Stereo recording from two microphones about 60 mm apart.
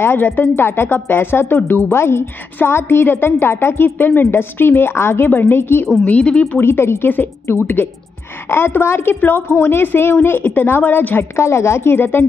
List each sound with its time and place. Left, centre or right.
0.0 s a woman's voice: left
6.0 s speech: left
6.6 s a woman's voice: left